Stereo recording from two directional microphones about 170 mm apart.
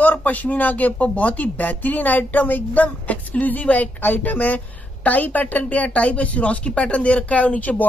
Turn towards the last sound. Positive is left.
turn(degrees=10)  # may be behind; listen again after turning